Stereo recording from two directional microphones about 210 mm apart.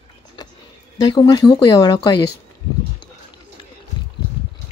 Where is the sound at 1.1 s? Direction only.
20° left (ahead or behind).